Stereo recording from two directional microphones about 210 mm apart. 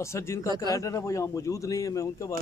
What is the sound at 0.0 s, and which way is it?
Speech, 15° left (ahead or behind).